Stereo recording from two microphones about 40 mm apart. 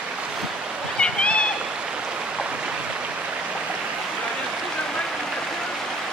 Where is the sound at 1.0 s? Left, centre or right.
Left.